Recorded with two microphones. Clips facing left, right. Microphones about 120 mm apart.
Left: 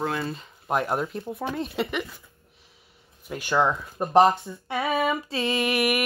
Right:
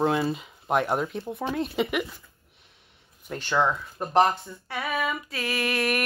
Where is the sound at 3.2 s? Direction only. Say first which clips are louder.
Left 1 dB; 10° left (ahead or behind).